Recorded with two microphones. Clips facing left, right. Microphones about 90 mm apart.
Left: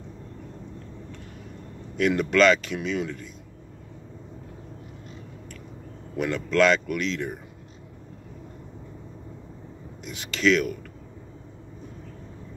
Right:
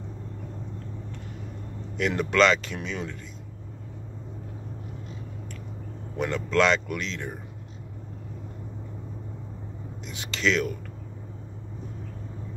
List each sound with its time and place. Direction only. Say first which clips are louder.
2.0 s speech: left 2 dB; 25° right (ahead or behind)
6.1 s speech: left 2 dB; 25° right (ahead or behind)
10.0 s speech: left 4 dB; 25° right (ahead or behind)